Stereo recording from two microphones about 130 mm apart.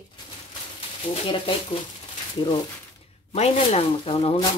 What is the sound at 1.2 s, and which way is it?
Speech, 45° left (ahead or behind).